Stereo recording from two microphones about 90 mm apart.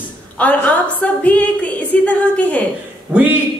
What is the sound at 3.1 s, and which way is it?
Speech, 15° right (ahead or behind).